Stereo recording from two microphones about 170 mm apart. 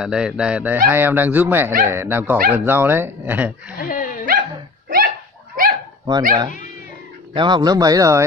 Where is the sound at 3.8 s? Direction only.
55° left (ahead or behind).